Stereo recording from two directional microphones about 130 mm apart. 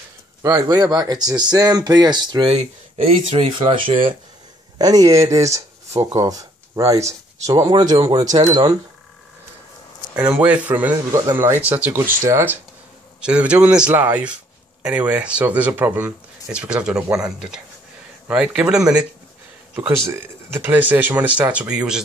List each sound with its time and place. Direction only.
0.4 s speech: 30° right (ahead or behind)
4.7 s speech: 30° right (ahead or behind)
10.1 s speech: 10° right (ahead or behind)
11.1 s speech: 25° right (ahead or behind)
13.2 s speech: 10° right (ahead or behind)
19.7 s speech: 15° right (ahead or behind)